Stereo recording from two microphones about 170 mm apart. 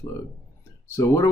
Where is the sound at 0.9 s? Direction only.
15° left (ahead or behind).